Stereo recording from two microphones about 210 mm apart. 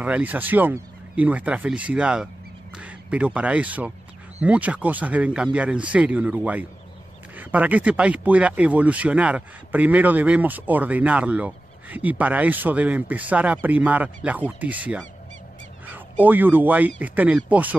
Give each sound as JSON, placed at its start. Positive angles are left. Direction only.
{"t": 0.0, "sound": "speech", "side_deg": -5}